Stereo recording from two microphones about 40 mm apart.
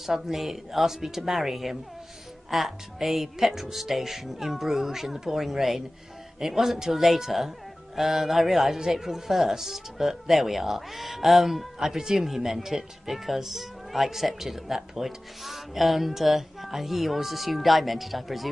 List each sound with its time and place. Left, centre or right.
0.0 s speech: centre